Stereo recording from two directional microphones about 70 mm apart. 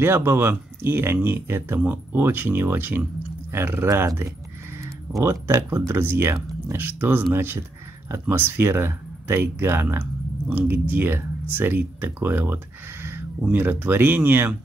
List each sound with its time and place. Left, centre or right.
0.0 s speech: right